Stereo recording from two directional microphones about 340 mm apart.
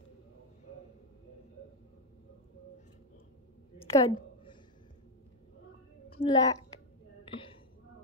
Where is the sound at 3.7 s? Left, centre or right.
Centre.